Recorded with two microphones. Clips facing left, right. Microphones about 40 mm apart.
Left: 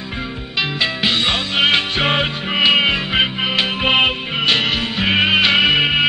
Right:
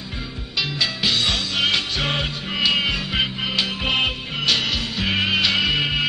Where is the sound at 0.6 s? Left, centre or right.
Left.